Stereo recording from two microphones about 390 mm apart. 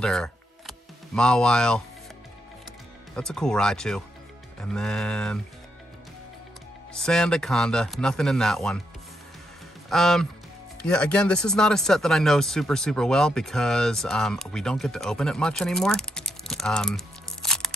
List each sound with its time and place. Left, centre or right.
0.0 s music: centre
3.2 s speech: centre
6.9 s speech: centre
9.8 s speech: centre